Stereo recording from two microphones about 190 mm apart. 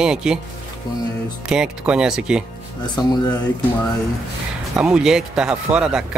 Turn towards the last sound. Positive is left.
turn(degrees=-5)  # may be behind; listen again after turning